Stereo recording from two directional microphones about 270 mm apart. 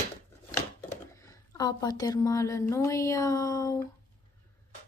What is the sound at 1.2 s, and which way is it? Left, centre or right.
A woman's voice, centre.